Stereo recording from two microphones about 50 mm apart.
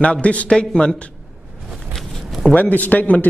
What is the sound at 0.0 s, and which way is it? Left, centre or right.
Speech, left.